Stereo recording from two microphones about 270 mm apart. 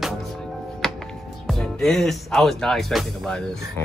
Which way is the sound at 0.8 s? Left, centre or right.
Centre.